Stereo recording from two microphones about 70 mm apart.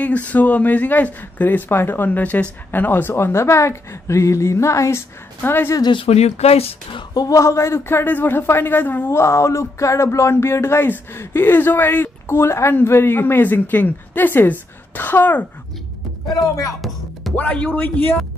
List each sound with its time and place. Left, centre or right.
0.0 s speech: left
5.4 s speech: left
7.2 s speech: left
16.3 s speech: left
17.4 s speech: left